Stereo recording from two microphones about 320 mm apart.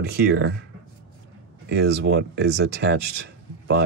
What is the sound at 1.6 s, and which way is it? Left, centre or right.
Speech, right.